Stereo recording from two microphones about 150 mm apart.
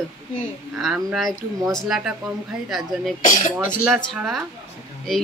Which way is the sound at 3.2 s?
60° left (ahead or behind).